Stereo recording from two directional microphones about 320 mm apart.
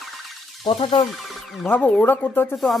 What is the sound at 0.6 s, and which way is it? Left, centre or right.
Speech, centre.